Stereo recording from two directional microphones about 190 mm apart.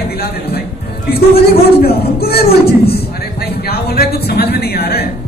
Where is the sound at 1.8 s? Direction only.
55° left (ahead or behind).